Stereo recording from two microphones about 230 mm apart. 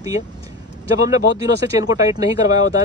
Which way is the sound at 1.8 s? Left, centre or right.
Centre.